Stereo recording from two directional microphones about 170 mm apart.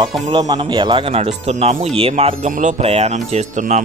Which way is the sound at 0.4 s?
25° right (ahead or behind).